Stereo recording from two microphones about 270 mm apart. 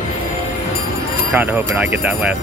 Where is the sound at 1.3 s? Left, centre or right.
Centre.